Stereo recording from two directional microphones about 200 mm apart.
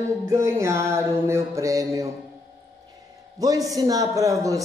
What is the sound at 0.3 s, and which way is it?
Speech, 15° right (ahead or behind).